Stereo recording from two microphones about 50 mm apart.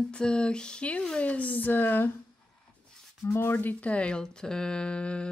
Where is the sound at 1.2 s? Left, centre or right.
Left.